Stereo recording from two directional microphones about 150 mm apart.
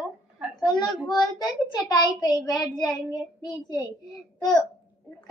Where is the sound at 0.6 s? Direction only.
30° left (ahead or behind).